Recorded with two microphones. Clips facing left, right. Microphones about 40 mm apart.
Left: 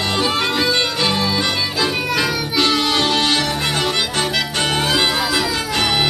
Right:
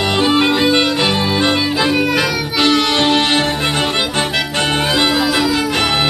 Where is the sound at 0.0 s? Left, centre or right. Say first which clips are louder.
Right 5 dB; right.